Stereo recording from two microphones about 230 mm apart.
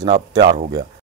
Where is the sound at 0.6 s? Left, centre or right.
Right.